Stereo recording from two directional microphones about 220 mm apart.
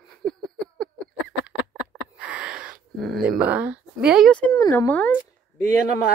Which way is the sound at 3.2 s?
5° right (ahead or behind).